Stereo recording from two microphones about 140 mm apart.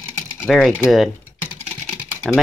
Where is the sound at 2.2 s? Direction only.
Centre (ahead or behind).